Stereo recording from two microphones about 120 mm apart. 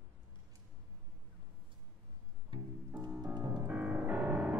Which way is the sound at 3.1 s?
10° right (ahead or behind).